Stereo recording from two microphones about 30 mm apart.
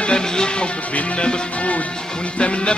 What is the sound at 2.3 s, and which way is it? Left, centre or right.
Music, left.